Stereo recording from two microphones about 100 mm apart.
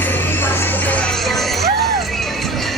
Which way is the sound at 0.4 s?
20° left (ahead or behind).